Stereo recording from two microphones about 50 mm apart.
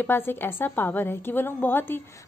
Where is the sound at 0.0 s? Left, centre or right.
Left.